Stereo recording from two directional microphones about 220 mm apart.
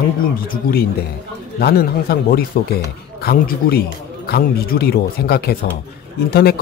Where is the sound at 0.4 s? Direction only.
40° left (ahead or behind).